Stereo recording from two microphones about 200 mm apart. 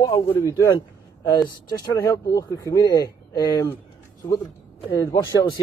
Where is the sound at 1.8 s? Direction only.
15° left (ahead or behind).